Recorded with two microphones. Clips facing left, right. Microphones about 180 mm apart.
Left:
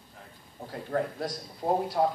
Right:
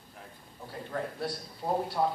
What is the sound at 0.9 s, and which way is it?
A man's voice, 45° left (ahead or behind).